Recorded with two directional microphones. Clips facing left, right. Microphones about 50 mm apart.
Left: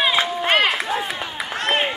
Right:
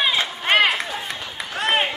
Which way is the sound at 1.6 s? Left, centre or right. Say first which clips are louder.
Even; centre.